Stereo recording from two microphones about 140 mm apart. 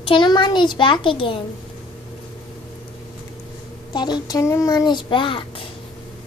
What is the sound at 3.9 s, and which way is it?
A child's voice, 30° left (ahead or behind).